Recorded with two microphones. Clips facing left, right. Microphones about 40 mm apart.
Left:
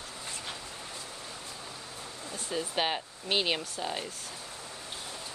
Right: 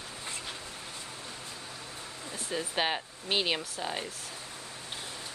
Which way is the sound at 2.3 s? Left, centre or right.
Centre.